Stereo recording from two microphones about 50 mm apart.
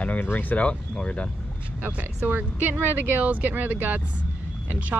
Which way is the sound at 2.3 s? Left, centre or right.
Right.